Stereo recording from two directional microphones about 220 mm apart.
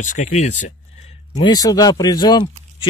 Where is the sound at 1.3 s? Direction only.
15° left (ahead or behind).